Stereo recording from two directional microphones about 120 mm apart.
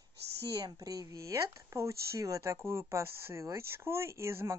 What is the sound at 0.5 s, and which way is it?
Speech, 30° right (ahead or behind).